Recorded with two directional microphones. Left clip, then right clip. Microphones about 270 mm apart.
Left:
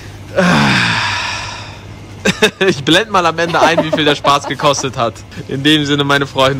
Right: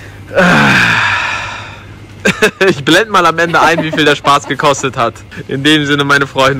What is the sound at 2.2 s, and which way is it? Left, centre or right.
A man's voice, centre.